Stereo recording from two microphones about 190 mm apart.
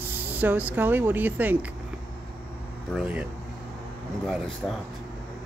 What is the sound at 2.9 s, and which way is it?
Speech, 5° right (ahead or behind).